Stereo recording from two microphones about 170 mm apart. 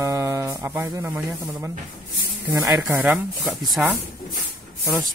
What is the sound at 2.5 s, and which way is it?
Speech, 20° right (ahead or behind).